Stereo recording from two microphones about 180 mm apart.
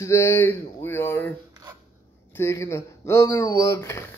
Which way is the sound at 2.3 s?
15° left (ahead or behind).